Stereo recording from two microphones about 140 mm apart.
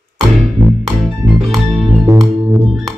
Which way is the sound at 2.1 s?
25° right (ahead or behind).